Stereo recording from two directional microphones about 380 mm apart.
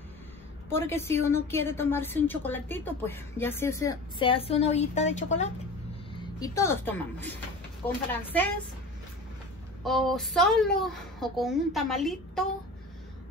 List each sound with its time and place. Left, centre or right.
0.7 s a woman's voice: centre
9.8 s a woman's voice: centre